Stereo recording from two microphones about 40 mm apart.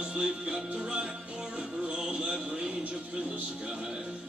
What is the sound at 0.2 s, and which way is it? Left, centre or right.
Music, right.